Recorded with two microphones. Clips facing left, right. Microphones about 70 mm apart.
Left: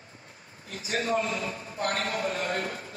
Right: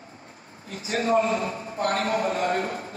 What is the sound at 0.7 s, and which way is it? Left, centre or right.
A man's voice, right.